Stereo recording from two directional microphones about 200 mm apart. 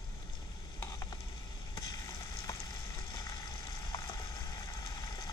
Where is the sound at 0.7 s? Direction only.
20° left (ahead or behind).